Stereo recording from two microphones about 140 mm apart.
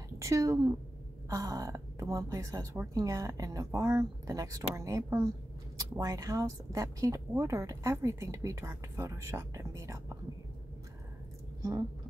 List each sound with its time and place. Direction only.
0.2 s a woman's voice: 20° right (ahead or behind)